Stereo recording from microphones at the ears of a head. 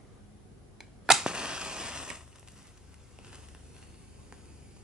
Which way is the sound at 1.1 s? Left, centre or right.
Centre.